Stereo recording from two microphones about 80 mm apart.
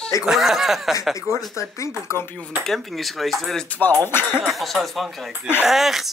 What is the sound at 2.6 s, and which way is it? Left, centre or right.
Speech, centre.